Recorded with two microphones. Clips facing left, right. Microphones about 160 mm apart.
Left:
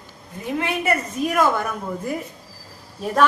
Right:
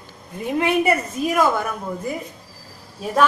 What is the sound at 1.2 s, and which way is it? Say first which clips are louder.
Speech: right 1 dB; 5° right (ahead or behind).